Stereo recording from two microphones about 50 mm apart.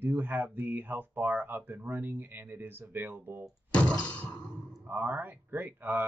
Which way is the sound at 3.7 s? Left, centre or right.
Left.